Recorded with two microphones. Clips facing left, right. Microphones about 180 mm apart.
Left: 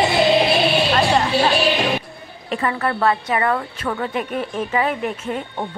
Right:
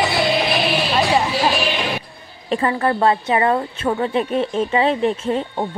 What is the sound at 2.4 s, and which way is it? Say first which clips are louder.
A woman's voice: right 3 dB; 30° right (ahead or behind).